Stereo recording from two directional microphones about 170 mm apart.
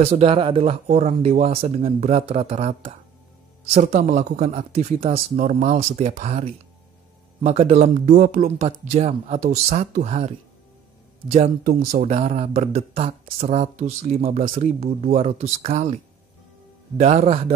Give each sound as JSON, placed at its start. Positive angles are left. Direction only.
{"t": 0.0, "sound": "speech", "side_deg": -40}
{"t": 7.4, "sound": "speech", "side_deg": -40}
{"t": 11.6, "sound": "speech", "side_deg": -55}
{"t": 12.1, "sound": "speech", "side_deg": -35}